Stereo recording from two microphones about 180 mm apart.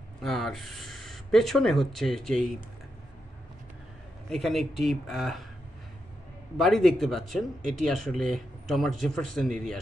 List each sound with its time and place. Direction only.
0.2 s speech: centre (ahead or behind)
4.3 s speech: centre (ahead or behind)
6.6 s speech: centre (ahead or behind)